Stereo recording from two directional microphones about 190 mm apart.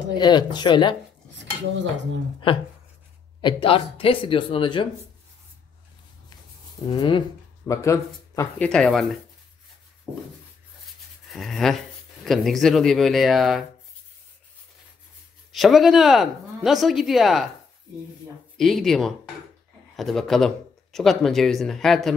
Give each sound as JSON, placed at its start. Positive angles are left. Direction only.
{"t": 0.2, "sound": "speech", "side_deg": 20}
{"t": 1.4, "sound": "cutlery", "side_deg": -70}
{"t": 2.4, "sound": "speech", "side_deg": 25}
{"t": 6.9, "sound": "speech", "side_deg": 25}
{"t": 11.2, "sound": "speech", "side_deg": 0}
{"t": 15.5, "sound": "speech", "side_deg": 0}
{"t": 18.6, "sound": "speech", "side_deg": 0}